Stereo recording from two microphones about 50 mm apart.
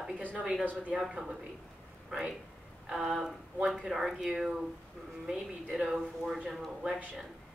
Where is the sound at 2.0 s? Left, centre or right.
Centre.